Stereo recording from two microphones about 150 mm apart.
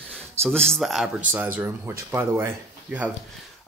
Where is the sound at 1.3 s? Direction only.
10° right (ahead or behind).